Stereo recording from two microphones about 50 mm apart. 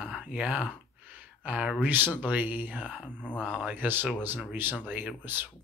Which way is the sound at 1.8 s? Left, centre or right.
Right.